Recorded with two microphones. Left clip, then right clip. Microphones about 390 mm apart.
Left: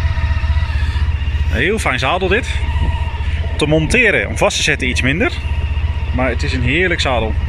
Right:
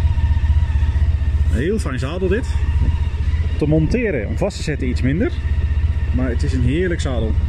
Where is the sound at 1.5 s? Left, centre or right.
Left.